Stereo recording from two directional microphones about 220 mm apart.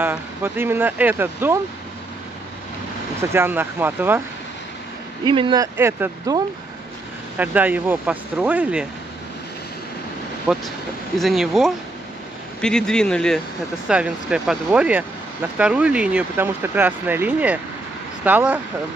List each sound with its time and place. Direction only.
0.0 s speech: 10° right (ahead or behind)
3.2 s speech: 10° right (ahead or behind)
5.2 s speech: 20° right (ahead or behind); by 8.8 s 5° right (ahead or behind)
10.5 s speech: 5° right (ahead or behind)